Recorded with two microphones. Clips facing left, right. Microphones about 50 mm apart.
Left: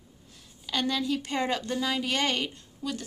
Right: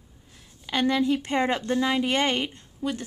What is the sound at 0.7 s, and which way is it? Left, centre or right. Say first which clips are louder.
A woman's voice: right 5 dB; right.